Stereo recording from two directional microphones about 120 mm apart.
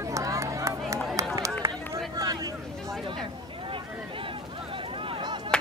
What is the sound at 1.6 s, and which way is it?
Run, 20° right (ahead or behind).